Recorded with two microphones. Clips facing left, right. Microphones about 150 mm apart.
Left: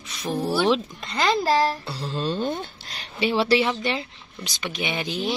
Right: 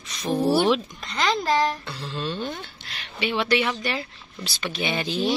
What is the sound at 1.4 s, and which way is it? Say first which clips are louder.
Child singing: left 1 dB; 35° left (ahead or behind).